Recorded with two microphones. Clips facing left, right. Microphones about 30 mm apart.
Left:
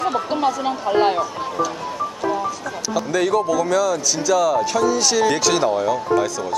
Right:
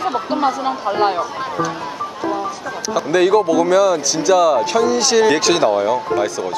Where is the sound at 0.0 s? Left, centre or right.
Centre.